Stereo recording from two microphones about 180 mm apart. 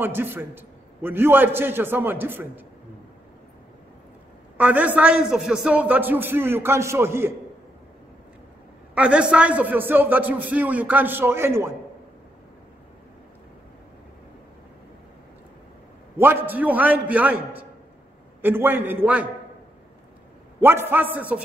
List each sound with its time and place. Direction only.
0.0 s a man's voice: 10° right (ahead or behind)
4.6 s a man's voice: 10° right (ahead or behind)
8.9 s a man's voice: 5° right (ahead or behind)
16.2 s a man's voice: 10° right (ahead or behind)
20.6 s a man's voice: 10° right (ahead or behind)